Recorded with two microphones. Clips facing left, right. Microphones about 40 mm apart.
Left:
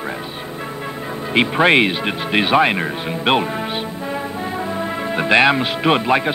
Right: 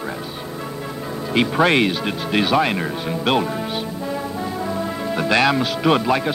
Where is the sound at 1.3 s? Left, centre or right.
Left.